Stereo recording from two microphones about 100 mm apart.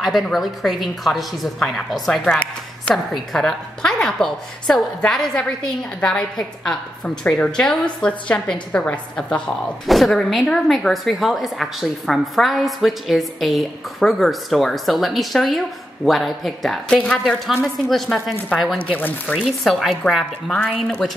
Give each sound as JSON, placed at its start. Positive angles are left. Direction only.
{"t": 0.0, "sound": "a woman's voice", "side_deg": 0}
{"t": 9.8, "sound": "speech", "side_deg": 0}
{"t": 18.9, "sound": "a woman's voice", "side_deg": 15}
{"t": 19.4, "sound": "speech", "side_deg": 0}